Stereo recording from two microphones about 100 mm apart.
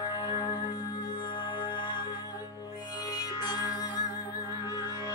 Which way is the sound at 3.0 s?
40° left (ahead or behind).